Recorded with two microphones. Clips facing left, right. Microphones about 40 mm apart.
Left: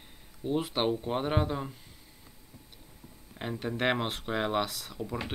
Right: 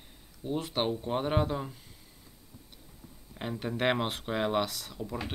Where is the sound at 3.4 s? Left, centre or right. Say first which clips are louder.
Even; centre.